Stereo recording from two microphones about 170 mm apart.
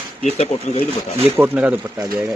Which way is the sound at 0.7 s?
45° left (ahead or behind).